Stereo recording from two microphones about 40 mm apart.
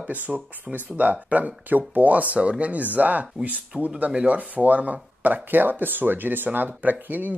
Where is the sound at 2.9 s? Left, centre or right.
Right.